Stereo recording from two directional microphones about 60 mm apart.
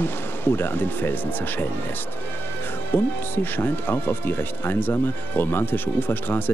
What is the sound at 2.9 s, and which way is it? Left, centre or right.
Speech, left.